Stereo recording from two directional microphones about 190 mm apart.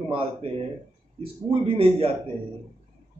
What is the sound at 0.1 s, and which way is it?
A man's voice, 30° right (ahead or behind).